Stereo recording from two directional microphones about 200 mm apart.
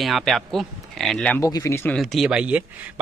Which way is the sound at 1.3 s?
15° left (ahead or behind).